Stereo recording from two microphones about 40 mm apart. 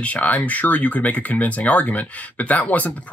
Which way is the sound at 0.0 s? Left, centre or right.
Left.